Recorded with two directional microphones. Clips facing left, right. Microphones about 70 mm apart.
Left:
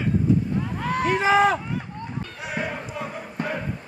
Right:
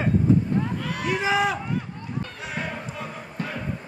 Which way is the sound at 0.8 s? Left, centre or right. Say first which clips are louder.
Left 4 dB; left.